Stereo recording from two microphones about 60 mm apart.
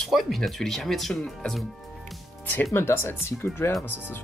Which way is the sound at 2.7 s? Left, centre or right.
Left.